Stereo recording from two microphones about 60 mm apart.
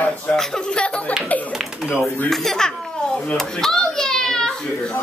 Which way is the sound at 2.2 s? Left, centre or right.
Centre.